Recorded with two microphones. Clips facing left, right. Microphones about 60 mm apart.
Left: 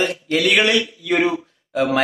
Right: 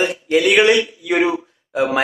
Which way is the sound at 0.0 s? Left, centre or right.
Centre.